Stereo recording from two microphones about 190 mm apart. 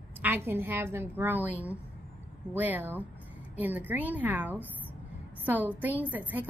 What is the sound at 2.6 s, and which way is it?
A woman's voice, 10° right (ahead or behind).